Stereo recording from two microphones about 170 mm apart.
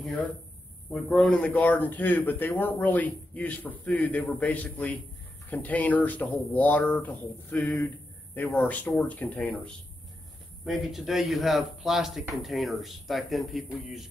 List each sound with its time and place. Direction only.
0.0 s a man's voice: 10° left (ahead or behind)